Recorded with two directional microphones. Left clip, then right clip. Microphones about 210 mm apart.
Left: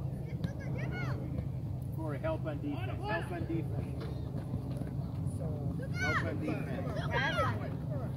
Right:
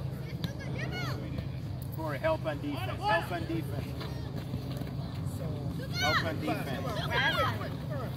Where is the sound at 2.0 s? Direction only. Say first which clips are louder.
Right 6 dB; 40° right (ahead or behind).